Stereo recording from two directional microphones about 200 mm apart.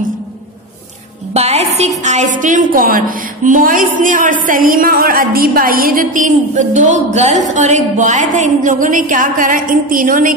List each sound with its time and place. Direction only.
1.3 s music: 30° right (ahead or behind)
1.8 s a woman's voice: 35° right (ahead or behind)